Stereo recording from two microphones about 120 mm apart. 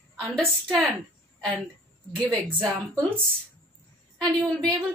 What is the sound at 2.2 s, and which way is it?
Speech, 10° left (ahead or behind).